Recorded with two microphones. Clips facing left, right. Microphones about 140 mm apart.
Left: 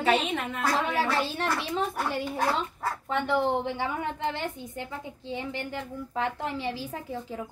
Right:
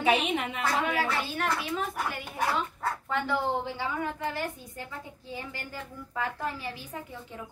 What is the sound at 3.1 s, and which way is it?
A woman's voice, 20° left (ahead or behind).